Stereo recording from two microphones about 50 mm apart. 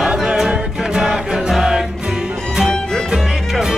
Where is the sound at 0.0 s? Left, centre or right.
Centre.